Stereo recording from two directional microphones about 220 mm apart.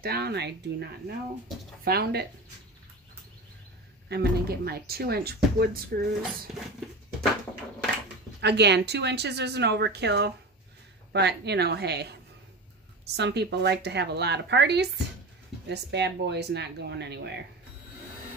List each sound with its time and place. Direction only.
0.0 s speech: 45° right (ahead or behind)
4.1 s speech: 45° right (ahead or behind)
8.4 s speech: 50° right (ahead or behind)